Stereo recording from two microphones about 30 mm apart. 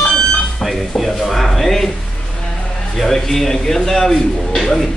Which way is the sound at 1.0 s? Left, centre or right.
Centre.